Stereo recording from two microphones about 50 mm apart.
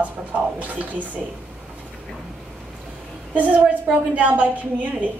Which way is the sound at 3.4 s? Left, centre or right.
Right.